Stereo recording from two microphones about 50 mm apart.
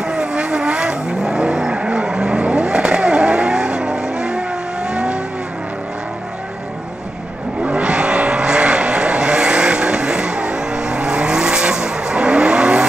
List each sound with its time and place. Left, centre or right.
0.0 s vehicle: centre
7.6 s vehicle: right